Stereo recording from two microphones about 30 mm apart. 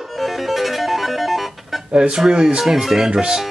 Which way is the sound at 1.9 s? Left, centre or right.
Centre.